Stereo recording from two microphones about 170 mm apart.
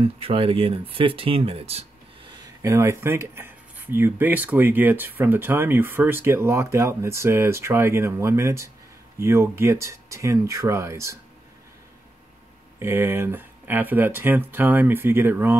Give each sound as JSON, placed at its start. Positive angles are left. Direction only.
{"t": 0.0, "sound": "speech", "side_deg": -35}
{"t": 2.3, "sound": "speech", "side_deg": -15}
{"t": 12.7, "sound": "speech", "side_deg": -15}